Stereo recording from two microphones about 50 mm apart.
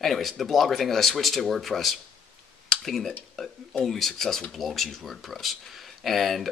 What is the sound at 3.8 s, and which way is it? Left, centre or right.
Speech, centre.